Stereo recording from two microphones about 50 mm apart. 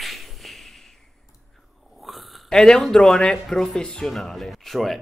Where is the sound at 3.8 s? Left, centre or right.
Centre.